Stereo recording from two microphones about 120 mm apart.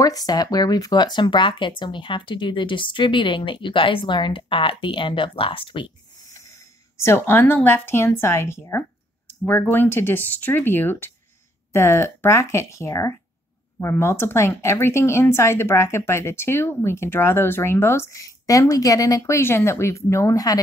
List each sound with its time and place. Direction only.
0.0 s speech: 30° left (ahead or behind); by 5.9 s 45° left (ahead or behind)
6.4 s speech: 25° left (ahead or behind)